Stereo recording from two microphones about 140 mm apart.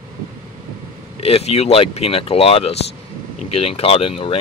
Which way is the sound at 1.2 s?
45° left (ahead or behind).